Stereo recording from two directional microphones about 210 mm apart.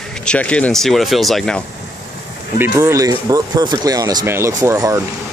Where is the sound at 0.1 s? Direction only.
5° left (ahead or behind).